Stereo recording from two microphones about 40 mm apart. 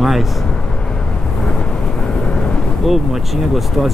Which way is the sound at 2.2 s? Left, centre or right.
Left.